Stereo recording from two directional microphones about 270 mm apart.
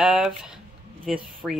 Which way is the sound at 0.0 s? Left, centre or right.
Centre.